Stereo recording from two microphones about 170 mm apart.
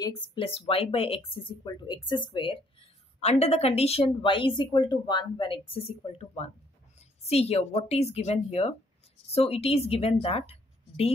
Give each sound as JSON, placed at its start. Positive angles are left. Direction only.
{"t": 0.0, "sound": "a woman's voice", "side_deg": 25}